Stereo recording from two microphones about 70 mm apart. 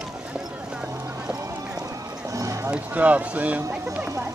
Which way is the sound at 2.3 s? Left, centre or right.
Right.